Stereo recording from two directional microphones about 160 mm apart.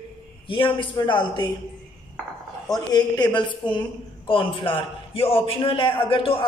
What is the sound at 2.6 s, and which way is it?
A woman's voice, 25° left (ahead or behind).